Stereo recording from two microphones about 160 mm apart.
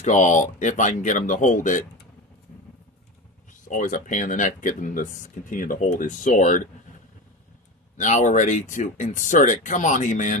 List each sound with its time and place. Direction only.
0.0 s speech: 50° left (ahead or behind)
3.6 s speech: 55° left (ahead or behind)
8.0 s speech: 50° left (ahead or behind)